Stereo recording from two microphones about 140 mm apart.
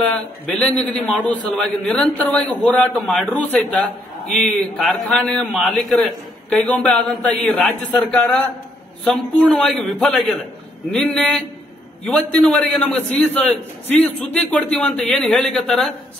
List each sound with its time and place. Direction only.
0.8 s a man's voice: 10° left (ahead or behind)